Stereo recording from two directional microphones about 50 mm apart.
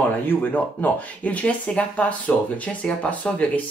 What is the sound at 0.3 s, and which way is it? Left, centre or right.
Speech, left.